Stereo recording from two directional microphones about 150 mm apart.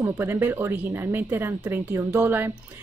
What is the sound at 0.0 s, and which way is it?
Speech, 15° right (ahead or behind).